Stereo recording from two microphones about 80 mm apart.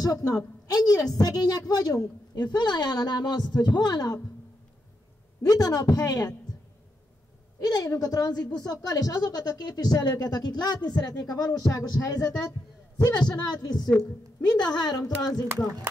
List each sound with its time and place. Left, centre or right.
0.0 s a woman's voice: left
5.5 s speech: left
7.6 s a woman's voice: left